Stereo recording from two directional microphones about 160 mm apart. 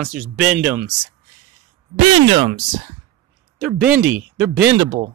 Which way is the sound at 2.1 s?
35° right (ahead or behind).